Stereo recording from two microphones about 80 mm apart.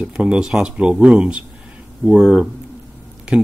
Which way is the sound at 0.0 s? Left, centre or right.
Centre.